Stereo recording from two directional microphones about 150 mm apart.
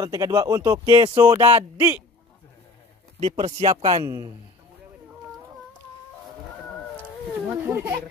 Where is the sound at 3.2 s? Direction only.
40° right (ahead or behind).